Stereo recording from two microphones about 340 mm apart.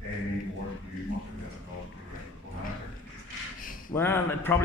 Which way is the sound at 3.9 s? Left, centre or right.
Centre.